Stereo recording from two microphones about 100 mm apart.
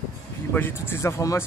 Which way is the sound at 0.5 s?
20° left (ahead or behind).